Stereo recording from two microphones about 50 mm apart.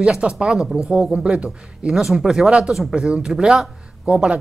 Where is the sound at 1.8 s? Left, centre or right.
Centre.